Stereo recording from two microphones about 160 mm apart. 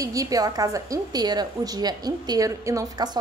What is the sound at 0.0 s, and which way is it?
A woman's voice, 20° right (ahead or behind).